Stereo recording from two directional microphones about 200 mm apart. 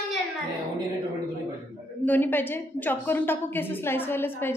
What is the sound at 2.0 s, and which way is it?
A woman's voice, 10° left (ahead or behind).